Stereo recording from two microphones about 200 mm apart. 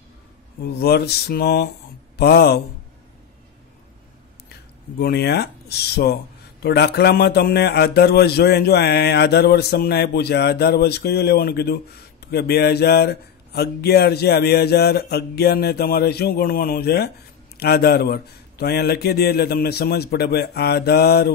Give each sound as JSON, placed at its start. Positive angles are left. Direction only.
{"t": 0.7, "sound": "a man's voice", "side_deg": 55}
{"t": 4.9, "sound": "a man's voice", "side_deg": 55}